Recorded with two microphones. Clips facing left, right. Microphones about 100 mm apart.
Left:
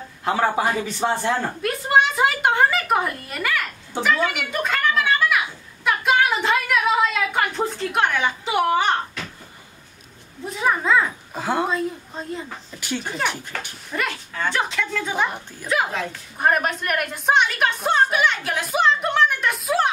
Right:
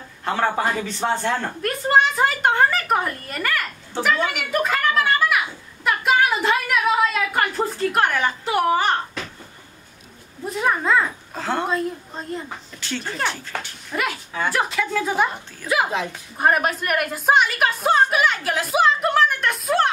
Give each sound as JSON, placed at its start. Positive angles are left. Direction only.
{"t": 0.2, "sound": "a woman's voice", "side_deg": 10}
{"t": 4.0, "sound": "a sound", "side_deg": 0}
{"t": 10.4, "sound": "a woman's voice", "side_deg": 0}
{"t": 11.3, "sound": "a woman's voice", "side_deg": 10}
{"t": 11.6, "sound": "a woman's voice", "side_deg": 0}
{"t": 12.8, "sound": "speech", "side_deg": 15}
{"t": 13.9, "sound": "a woman's voice", "side_deg": -10}
{"t": 15.9, "sound": "a woman's voice", "side_deg": -20}
{"t": 16.3, "sound": "a woman's voice", "side_deg": -5}